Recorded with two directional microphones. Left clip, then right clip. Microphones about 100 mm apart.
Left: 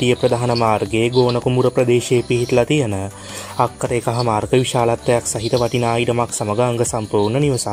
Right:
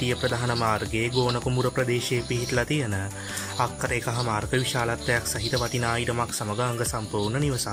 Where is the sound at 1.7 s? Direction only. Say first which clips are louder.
Left 10 dB; 30° left (ahead or behind).